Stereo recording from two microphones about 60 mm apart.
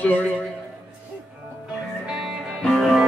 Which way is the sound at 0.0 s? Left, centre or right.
Left.